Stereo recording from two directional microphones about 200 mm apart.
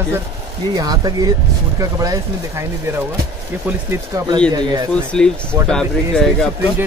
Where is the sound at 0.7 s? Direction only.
20° right (ahead or behind).